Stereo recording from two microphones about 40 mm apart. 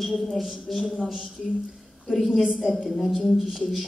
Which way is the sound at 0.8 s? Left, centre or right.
Centre.